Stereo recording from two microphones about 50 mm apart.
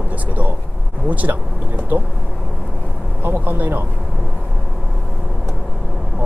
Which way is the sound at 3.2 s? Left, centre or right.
Right.